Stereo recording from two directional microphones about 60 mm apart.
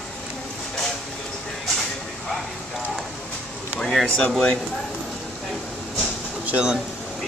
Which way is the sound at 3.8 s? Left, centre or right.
Centre.